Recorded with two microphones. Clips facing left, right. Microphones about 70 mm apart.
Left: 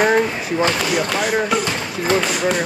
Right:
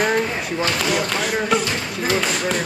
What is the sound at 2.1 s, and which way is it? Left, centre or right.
Speech, centre.